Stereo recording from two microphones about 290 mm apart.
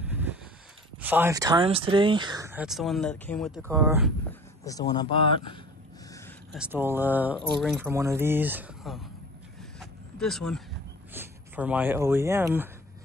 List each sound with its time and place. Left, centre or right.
0.0 s a sound: centre
0.9 s speech: centre
3.6 s speech: centre
4.3 s speech: centre
6.1 s a sound: centre
6.6 s speech: centre
9.8 s mechanisms: centre
11.1 s speech: centre